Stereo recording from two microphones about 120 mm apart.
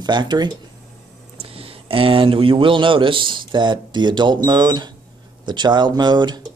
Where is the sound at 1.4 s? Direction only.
50° right (ahead or behind).